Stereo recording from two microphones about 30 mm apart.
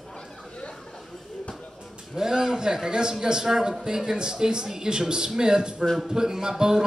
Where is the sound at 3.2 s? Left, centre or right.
Centre.